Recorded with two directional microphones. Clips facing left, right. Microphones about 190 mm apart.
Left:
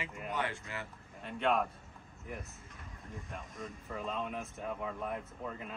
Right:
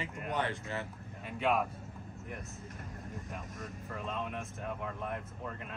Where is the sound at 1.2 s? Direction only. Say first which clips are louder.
Even; 5° right (ahead or behind).